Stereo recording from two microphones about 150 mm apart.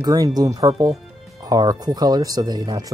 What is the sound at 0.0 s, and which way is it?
Speech, 25° right (ahead or behind).